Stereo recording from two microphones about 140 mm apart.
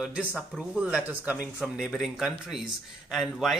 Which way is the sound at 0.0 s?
10° right (ahead or behind).